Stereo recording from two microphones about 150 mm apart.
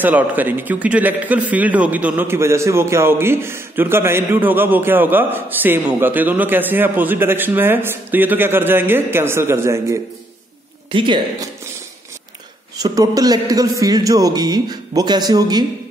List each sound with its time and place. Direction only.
0.0 s a man's voice: 10° right (ahead or behind)
10.9 s a woman's voice: 35° right (ahead or behind)
12.7 s a man's voice: 25° right (ahead or behind)